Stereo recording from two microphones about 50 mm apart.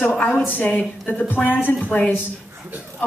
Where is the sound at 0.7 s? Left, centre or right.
Left.